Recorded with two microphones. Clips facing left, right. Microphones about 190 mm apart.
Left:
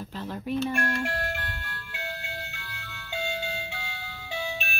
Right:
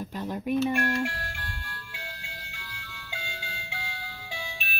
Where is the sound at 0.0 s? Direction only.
15° right (ahead or behind).